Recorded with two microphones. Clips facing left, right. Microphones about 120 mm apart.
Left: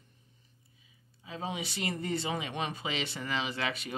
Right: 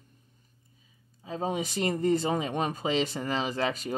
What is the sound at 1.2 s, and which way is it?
Speech, 40° right (ahead or behind).